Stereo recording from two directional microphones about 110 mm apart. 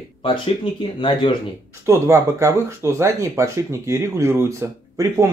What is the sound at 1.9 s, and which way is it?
Speech, 25° right (ahead or behind).